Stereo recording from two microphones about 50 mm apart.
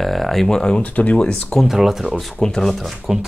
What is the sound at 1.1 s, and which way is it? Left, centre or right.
Speech, centre.